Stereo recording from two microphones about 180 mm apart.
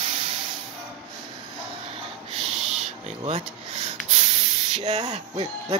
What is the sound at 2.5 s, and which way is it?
Owl, centre (ahead or behind).